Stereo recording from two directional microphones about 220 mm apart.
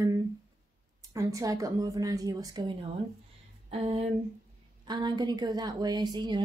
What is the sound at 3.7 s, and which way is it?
Speech, 30° right (ahead or behind).